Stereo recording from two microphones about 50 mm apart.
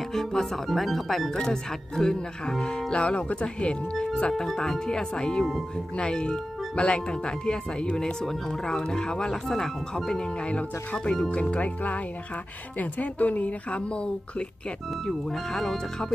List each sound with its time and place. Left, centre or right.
0.1 s speech: centre
10.4 s speech: left
15.0 s speech: centre